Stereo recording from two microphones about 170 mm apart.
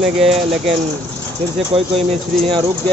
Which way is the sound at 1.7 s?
35° right (ahead or behind).